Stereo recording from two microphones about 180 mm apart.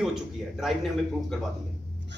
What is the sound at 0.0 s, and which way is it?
Speech, centre (ahead or behind).